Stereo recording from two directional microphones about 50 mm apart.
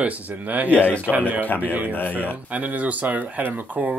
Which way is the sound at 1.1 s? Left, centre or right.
Left.